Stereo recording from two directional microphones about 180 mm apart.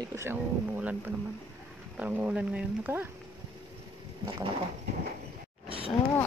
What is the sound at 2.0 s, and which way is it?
Speech, 5° right (ahead or behind).